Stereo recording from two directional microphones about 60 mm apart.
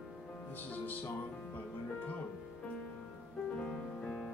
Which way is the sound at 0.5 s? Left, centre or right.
Left.